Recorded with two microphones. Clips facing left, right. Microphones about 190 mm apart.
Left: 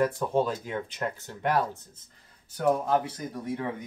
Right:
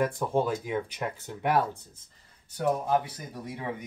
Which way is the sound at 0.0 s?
15° right (ahead or behind).